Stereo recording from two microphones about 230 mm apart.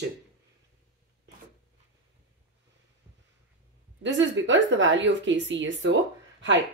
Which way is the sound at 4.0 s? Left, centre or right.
Right.